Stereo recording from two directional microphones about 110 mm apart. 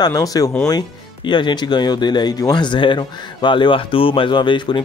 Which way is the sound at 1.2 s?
45° left (ahead or behind).